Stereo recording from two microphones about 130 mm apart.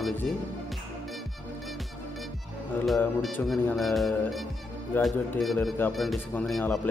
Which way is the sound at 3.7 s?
Centre (ahead or behind).